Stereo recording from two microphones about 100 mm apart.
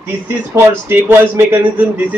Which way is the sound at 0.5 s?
25° right (ahead or behind).